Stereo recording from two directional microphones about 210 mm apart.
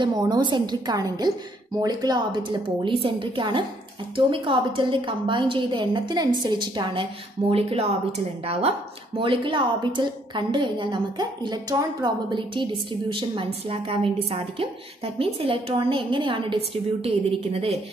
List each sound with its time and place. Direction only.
0.0 s a woman's voice: 20° right (ahead or behind)